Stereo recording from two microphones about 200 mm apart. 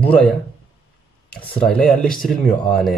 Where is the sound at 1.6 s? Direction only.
Centre (ahead or behind).